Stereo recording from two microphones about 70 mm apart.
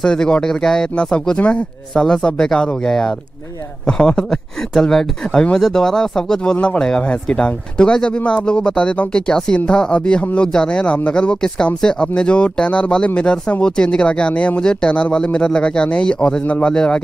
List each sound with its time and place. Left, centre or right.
0.0 s speech: centre